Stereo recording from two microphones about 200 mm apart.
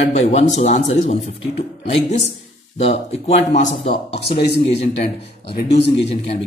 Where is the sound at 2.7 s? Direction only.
30° left (ahead or behind).